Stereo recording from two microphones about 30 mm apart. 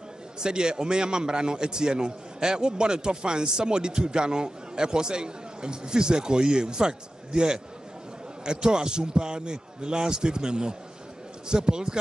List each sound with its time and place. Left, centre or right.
0.4 s a man's voice: right